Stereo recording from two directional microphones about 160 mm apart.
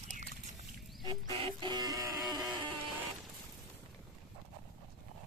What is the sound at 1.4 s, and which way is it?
Music, 30° right (ahead or behind).